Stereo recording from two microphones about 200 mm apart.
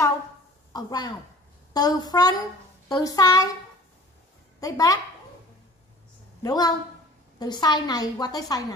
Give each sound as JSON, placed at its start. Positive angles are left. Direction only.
{"t": 0.7, "sound": "a woman's voice", "side_deg": 20}
{"t": 4.6, "sound": "a woman's voice", "side_deg": 15}
{"t": 6.4, "sound": "a woman's voice", "side_deg": 20}